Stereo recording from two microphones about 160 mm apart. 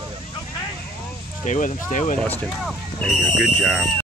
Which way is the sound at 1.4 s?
50° left (ahead or behind).